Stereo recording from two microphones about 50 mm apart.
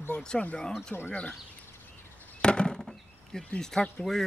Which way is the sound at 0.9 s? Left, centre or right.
Left.